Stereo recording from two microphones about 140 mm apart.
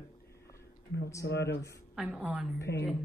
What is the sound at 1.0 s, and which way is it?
Speech, 20° left (ahead or behind).